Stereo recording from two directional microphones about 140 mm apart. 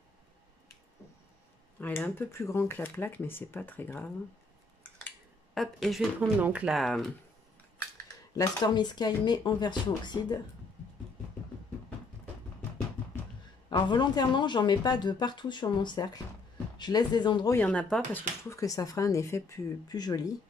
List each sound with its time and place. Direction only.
1.8 s speech: 15° left (ahead or behind)
5.5 s speech: centre (ahead or behind)
8.4 s speech: 30° left (ahead or behind)
13.7 s speech: 35° left (ahead or behind)
17.5 s speech: 10° left (ahead or behind)
18.5 s speech: 25° left (ahead or behind)